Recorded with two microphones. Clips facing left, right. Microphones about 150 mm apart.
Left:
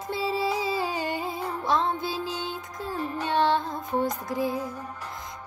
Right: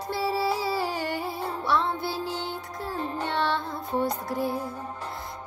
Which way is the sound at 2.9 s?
25° right (ahead or behind).